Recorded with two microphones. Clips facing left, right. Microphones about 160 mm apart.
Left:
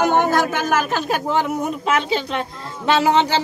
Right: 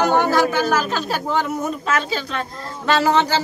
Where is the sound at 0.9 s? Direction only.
15° left (ahead or behind).